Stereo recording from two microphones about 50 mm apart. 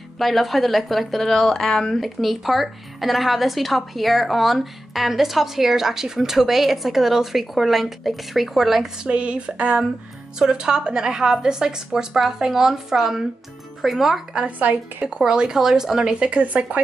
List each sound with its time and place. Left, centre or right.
0.2 s a woman's voice: centre
9.0 s a sound: right
10.4 s a woman's voice: centre
14.6 s speech: right
15.0 s speech: centre